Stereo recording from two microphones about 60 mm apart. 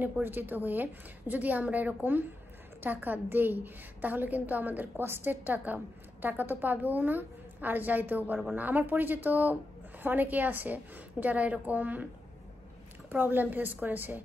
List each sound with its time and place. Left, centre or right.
0.0 s a woman's voice: right
13.1 s a woman's voice: right